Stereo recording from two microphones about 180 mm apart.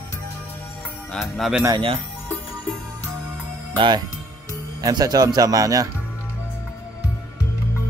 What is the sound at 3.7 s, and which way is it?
Speech, 25° right (ahead or behind).